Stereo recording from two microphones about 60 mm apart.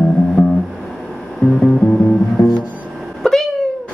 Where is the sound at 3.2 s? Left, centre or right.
Centre.